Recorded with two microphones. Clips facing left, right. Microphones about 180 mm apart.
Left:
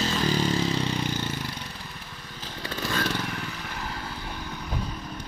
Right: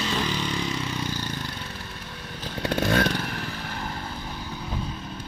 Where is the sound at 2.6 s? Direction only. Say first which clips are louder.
Right 7 dB; 65° right (ahead or behind).